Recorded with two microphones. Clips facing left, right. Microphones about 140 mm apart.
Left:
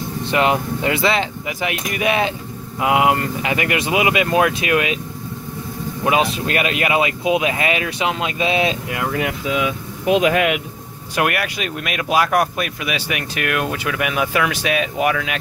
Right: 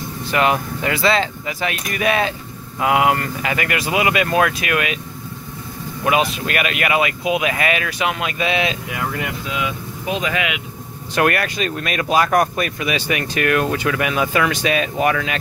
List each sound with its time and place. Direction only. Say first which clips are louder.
0.2 s speech: even; 25° left (ahead or behind)
6.3 s speech: left 2 dB; 25° left (ahead or behind)
10.0 s speech: left 7 dB; 55° left (ahead or behind)
11.1 s speech: right 2 dB; 10° left (ahead or behind)